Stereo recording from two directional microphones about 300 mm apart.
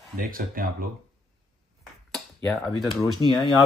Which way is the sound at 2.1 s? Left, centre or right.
Centre.